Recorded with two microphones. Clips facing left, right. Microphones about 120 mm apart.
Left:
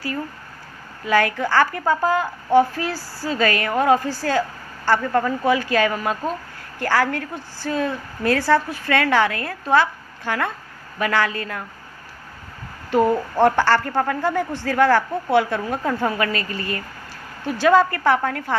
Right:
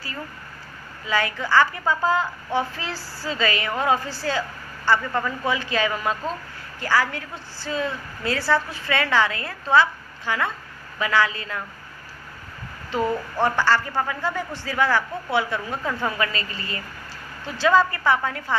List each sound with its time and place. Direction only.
1.0 s a woman's voice: 55° left (ahead or behind)
13.4 s a woman's voice: 60° left (ahead or behind)